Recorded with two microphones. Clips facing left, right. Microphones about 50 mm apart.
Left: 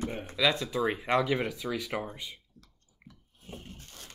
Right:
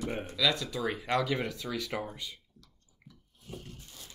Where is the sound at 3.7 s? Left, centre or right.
Left.